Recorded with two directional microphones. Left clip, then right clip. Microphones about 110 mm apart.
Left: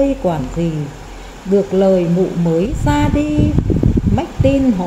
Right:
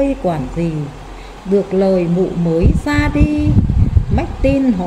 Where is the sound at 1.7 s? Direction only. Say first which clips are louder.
Left 2 dB; 10° right (ahead or behind).